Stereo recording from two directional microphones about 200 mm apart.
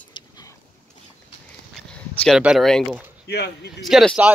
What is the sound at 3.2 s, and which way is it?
Speech, 55° left (ahead or behind).